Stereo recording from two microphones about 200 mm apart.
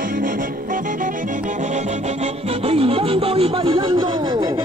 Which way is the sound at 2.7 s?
30° right (ahead or behind).